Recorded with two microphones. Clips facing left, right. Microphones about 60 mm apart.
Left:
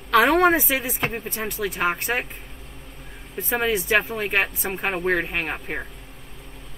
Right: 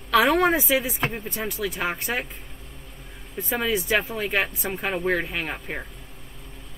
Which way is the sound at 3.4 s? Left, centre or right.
Centre.